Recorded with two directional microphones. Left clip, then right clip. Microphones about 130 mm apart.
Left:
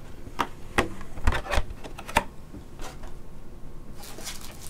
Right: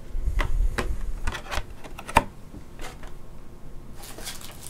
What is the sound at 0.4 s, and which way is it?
Typewriter, 35° left (ahead or behind).